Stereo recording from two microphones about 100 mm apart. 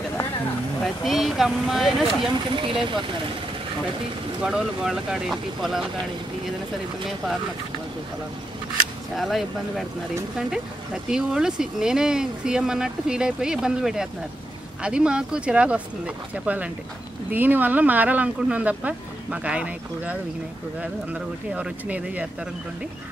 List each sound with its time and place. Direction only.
1.0 s speech: centre (ahead or behind)
2.5 s speech: 55° right (ahead or behind)
4.4 s speech: 5° right (ahead or behind)
9.1 s speech: centre (ahead or behind)
11.1 s speech: 5° right (ahead or behind)